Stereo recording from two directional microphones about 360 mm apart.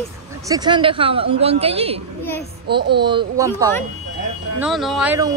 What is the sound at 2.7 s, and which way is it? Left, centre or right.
Speech, right.